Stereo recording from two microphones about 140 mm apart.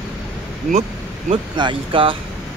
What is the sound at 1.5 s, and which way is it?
Speech, 35° right (ahead or behind).